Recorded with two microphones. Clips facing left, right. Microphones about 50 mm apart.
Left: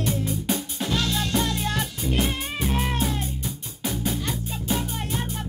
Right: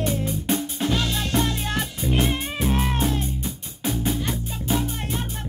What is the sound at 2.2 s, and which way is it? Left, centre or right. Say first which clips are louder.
Music: right 3 dB; centre.